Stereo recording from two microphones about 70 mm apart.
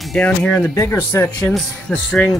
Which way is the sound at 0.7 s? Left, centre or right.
Left.